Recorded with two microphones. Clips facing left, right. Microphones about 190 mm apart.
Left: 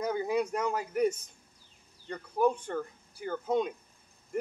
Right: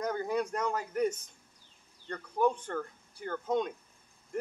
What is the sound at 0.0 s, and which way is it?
A man's voice, 10° left (ahead or behind).